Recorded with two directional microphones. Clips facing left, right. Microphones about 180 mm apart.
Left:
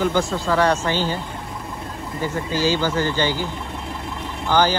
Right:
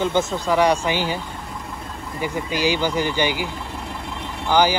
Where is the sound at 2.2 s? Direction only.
15° right (ahead or behind).